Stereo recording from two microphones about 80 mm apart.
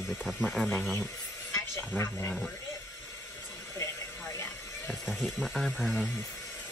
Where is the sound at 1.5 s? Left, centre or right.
Left.